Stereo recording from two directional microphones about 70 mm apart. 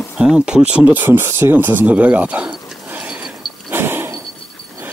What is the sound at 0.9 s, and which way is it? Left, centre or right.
Speech, right.